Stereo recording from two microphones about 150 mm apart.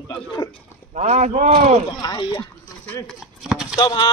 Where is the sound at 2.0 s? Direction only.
30° left (ahead or behind).